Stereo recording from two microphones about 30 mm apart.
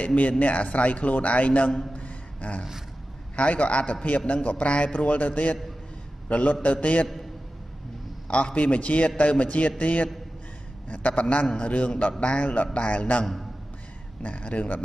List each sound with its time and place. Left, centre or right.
0.0 s a man's voice: left
2.0 s a sound: left
3.3 s a man's voice: left
8.3 s a man's voice: left
14.2 s a man's voice: left